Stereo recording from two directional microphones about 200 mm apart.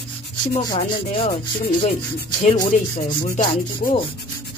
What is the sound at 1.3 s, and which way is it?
Speech, 50° left (ahead or behind).